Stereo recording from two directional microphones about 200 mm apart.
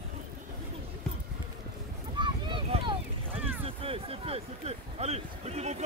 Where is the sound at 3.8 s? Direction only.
30° right (ahead or behind).